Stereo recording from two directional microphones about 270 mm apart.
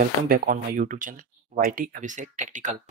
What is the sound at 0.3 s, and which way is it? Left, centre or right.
Speech, right.